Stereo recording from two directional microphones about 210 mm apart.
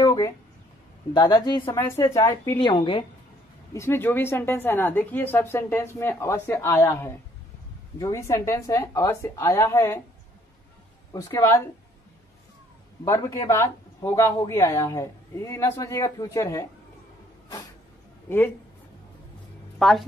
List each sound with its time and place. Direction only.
0.0 s a sound: 15° left (ahead or behind)
1.1 s a woman's voice: 20° left (ahead or behind)
11.1 s a woman's voice: 15° left (ahead or behind)
13.0 s a woman's voice: 15° left (ahead or behind)
19.8 s a woman's voice: centre (ahead or behind)